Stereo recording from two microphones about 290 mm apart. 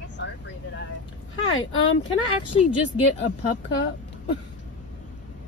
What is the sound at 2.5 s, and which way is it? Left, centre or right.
Speech, centre.